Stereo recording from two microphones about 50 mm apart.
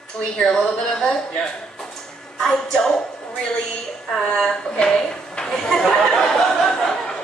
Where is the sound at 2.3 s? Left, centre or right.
Centre.